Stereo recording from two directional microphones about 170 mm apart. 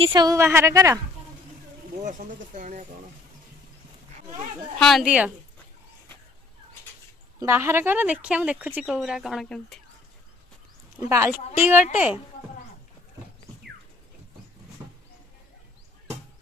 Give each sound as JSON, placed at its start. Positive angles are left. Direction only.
{"t": 0.0, "sound": "a woman's voice", "side_deg": -25}
{"t": 2.0, "sound": "speech", "side_deg": -50}
{"t": 4.7, "sound": "speech", "side_deg": 0}
{"t": 7.3, "sound": "speech", "side_deg": -15}
{"t": 11.0, "sound": "speech", "side_deg": -15}